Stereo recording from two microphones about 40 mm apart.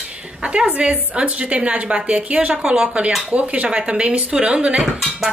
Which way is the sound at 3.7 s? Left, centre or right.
Right.